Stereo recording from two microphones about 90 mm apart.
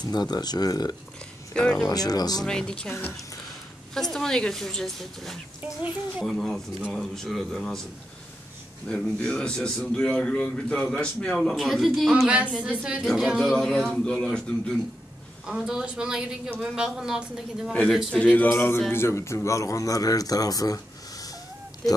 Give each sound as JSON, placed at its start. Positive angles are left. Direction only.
{"t": 0.0, "sound": "speech", "side_deg": 50}
{"t": 1.5, "sound": "a man's voice", "side_deg": 10}
{"t": 1.9, "sound": "speech", "side_deg": 45}
{"t": 2.4, "sound": "a man's voice", "side_deg": 10}
{"t": 2.9, "sound": "speech", "side_deg": 25}
{"t": 3.9, "sound": "a man's voice", "side_deg": 5}
{"t": 8.8, "sound": "a man's voice", "side_deg": 10}
{"t": 12.3, "sound": "a woman's voice", "side_deg": -15}
{"t": 15.4, "sound": "a woman's voice", "side_deg": -5}
{"t": 18.1, "sound": "a man's voice", "side_deg": 15}